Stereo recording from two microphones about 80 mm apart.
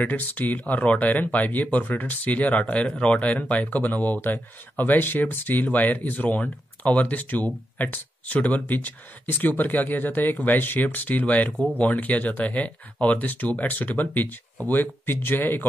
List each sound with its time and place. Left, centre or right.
0.0 s speech: left